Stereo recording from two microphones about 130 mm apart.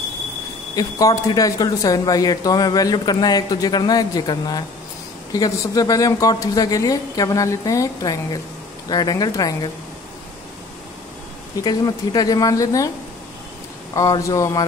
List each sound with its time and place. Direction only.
0.7 s speech: 25° left (ahead or behind)
11.6 s speech: 30° left (ahead or behind)
13.9 s speech: 25° left (ahead or behind)